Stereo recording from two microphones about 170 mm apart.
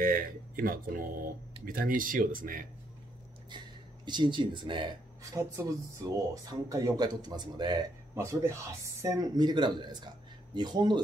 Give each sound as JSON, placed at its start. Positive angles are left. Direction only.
{"t": 0.0, "sound": "speech", "side_deg": -60}
{"t": 3.4, "sound": "speech", "side_deg": -25}